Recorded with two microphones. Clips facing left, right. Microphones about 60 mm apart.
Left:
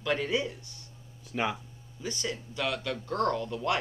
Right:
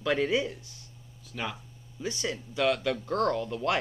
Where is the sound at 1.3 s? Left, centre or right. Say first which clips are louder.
Left 5 dB; left.